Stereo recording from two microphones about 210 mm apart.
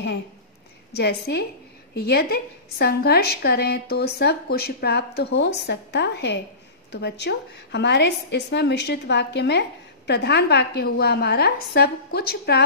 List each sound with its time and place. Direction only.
0.9 s a woman's voice: 50° left (ahead or behind)